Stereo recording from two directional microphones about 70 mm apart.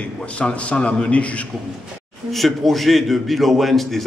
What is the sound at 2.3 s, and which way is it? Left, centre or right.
A man's voice, centre.